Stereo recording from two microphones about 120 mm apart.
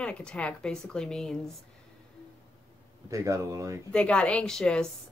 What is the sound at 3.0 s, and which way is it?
Speech, 25° right (ahead or behind).